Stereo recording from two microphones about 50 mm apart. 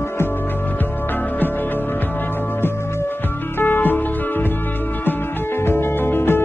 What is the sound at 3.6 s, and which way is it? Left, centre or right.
Music, left.